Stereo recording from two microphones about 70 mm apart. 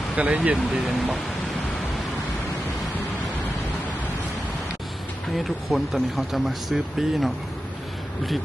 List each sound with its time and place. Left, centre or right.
0.1 s speech: centre
0.6 s speech: centre
5.3 s speech: centre